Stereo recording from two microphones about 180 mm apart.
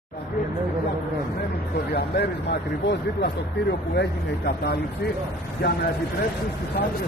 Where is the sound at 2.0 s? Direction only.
70° left (ahead or behind).